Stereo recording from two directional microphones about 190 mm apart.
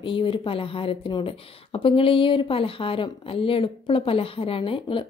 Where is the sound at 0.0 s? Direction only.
25° left (ahead or behind).